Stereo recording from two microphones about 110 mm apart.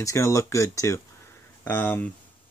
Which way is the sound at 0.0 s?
30° left (ahead or behind).